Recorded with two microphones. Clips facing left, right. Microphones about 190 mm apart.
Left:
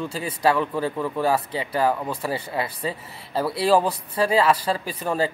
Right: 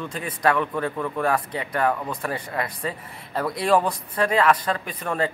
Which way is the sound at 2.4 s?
30° left (ahead or behind).